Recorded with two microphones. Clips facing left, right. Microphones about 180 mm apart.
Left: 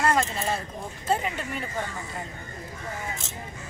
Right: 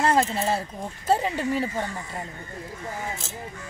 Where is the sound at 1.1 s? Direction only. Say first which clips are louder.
Right 5 dB; 35° right (ahead or behind).